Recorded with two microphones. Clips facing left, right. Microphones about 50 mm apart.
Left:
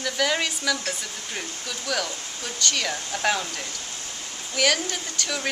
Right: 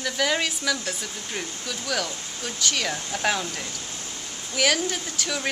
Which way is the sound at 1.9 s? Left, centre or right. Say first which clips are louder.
Left 1 dB; centre.